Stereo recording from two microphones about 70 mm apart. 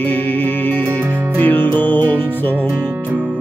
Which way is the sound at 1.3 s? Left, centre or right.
Left.